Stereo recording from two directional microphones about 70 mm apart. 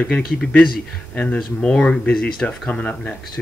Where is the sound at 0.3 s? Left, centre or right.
Centre.